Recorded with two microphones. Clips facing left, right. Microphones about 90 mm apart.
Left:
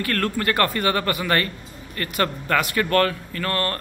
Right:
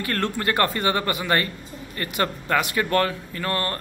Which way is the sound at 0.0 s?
20° right (ahead or behind).